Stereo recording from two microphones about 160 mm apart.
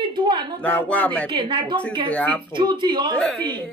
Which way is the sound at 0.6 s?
10° left (ahead or behind).